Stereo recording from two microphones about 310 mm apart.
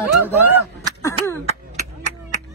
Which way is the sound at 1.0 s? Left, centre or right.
Centre.